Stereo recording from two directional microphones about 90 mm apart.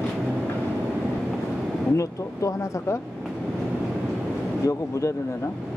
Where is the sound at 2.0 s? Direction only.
35° left (ahead or behind).